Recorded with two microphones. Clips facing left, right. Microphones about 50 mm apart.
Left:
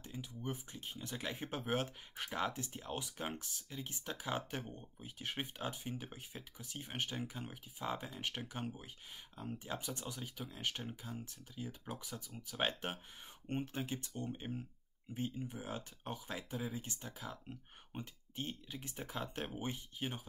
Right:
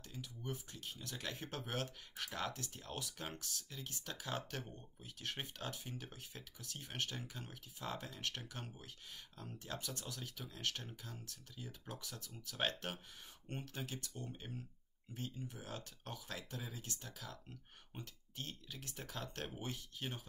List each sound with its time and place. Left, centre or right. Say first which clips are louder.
0.0 s speech: left 4 dB; left